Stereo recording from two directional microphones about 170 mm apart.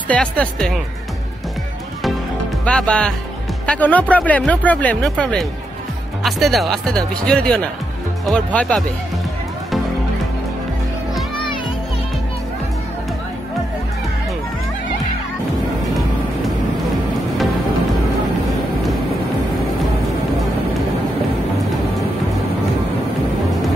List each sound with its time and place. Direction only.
0.1 s speech: 5° left (ahead or behind)
2.6 s speech: 5° left (ahead or behind)